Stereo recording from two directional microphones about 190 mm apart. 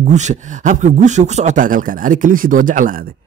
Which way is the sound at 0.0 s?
40° right (ahead or behind).